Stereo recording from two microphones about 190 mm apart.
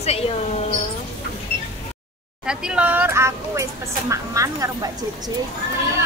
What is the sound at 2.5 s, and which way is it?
A woman's voice, 5° right (ahead or behind).